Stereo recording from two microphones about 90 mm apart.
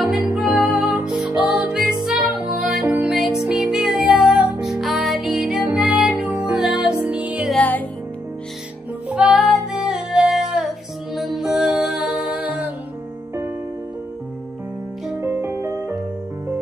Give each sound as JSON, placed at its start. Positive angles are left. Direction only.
{"t": 0.0, "sound": "music", "side_deg": -5}
{"t": 9.1, "sound": "music", "side_deg": -5}
{"t": 15.1, "sound": "music", "side_deg": -25}